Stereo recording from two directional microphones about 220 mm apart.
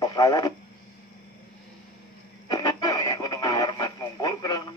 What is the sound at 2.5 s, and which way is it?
Radio, 15° left (ahead or behind).